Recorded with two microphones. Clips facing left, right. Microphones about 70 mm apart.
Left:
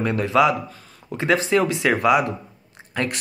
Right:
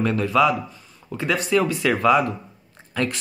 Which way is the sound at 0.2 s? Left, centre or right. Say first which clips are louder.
Left 2 dB; left.